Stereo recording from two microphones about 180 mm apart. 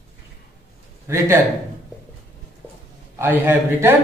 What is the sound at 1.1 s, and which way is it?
Speech, 15° right (ahead or behind).